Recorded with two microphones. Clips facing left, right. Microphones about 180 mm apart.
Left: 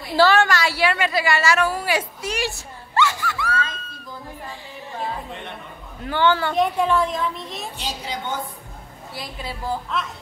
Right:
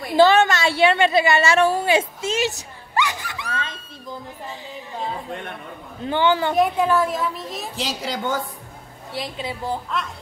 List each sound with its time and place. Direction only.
0.1 s a woman's voice: 20° right (ahead or behind)
6.0 s a woman's voice: 15° right (ahead or behind)
6.6 s a woman's voice: 5° right (ahead or behind)
7.7 s a woman's voice: 90° right
9.1 s a woman's voice: 20° right (ahead or behind)